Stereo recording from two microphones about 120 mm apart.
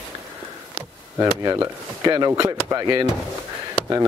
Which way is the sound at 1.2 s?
25° right (ahead or behind).